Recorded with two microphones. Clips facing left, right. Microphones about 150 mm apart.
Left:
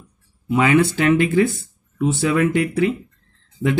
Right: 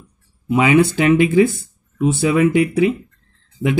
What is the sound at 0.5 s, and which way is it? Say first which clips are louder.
Speech: right 2 dB; 15° right (ahead or behind).